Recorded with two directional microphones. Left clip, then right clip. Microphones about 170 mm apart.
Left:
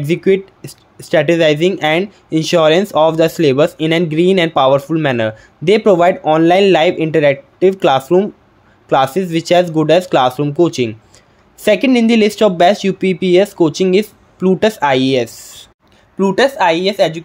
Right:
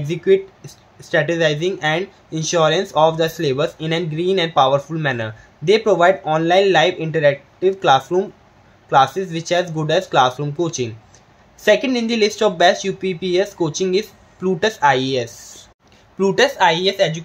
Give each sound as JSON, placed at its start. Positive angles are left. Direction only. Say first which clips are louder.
{"t": 0.0, "sound": "speech", "louder": "left 3 dB", "side_deg": 50}
{"t": 16.2, "sound": "speech", "louder": "left 3 dB", "side_deg": 30}